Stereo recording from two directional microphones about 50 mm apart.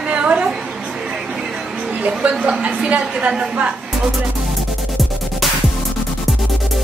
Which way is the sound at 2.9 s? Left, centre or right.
Right.